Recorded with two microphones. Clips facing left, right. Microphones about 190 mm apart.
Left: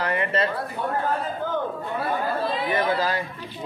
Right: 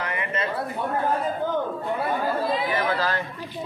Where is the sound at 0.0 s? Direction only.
35° left (ahead or behind).